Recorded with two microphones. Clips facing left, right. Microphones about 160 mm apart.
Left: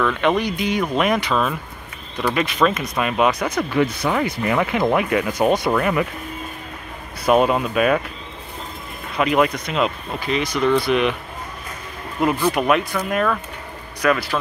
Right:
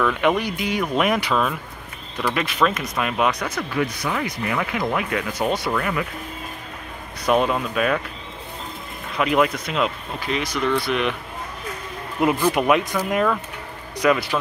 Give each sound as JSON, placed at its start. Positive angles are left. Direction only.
{"t": 0.0, "sound": "speech", "side_deg": -10}
{"t": 3.7, "sound": "speech", "side_deg": 25}
{"t": 5.7, "sound": "speech", "side_deg": 30}
{"t": 7.2, "sound": "speech", "side_deg": 5}
{"t": 9.2, "sound": "speech", "side_deg": 0}
{"t": 12.2, "sound": "a man's voice", "side_deg": -15}